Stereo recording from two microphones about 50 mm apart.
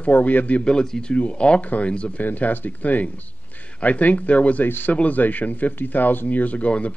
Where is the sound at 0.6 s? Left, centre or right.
Centre.